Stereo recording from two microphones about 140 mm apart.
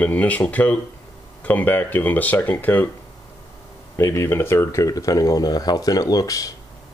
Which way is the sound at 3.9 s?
20° left (ahead or behind).